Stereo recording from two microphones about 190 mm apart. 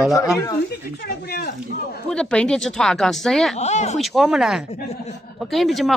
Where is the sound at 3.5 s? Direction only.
40° left (ahead or behind).